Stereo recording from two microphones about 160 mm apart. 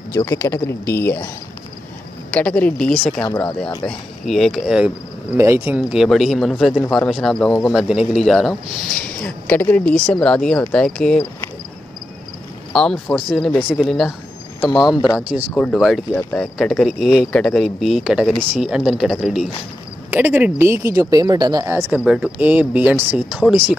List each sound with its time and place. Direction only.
0.1 s speech: 20° left (ahead or behind)
2.3 s speech: 10° left (ahead or behind)
12.7 s speech: centre (ahead or behind)
16.1 s speech: 15° left (ahead or behind)
16.3 s speech: centre (ahead or behind); by 21.8 s 20° right (ahead or behind)
21.9 s speech: 5° right (ahead or behind)